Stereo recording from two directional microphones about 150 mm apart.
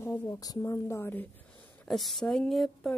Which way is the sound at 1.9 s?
Centre (ahead or behind).